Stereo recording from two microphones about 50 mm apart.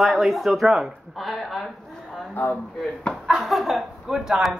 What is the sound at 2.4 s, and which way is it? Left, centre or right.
Speech, left.